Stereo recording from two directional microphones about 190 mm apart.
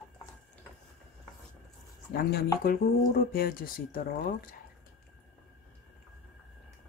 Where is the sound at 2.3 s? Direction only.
55° left (ahead or behind).